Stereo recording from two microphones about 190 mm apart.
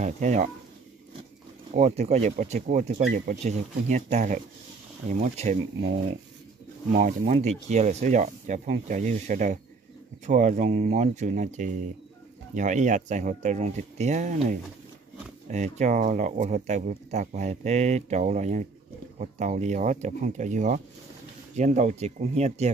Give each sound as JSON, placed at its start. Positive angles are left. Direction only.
{"t": 0.0, "sound": "speech", "side_deg": -40}
{"t": 1.7, "sound": "speech", "side_deg": -35}